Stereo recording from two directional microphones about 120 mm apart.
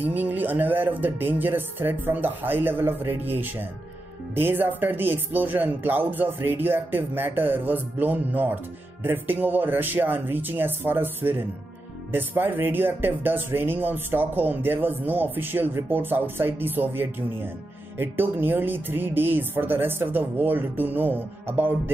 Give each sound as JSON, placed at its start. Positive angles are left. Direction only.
{"t": 0.0, "sound": "speech", "side_deg": -15}